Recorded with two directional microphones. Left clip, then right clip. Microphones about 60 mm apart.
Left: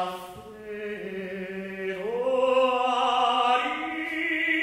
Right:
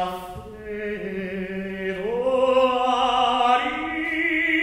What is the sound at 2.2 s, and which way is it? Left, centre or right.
Music, right.